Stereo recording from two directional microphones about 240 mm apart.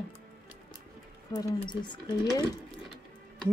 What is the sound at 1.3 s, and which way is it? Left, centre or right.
Speech, centre.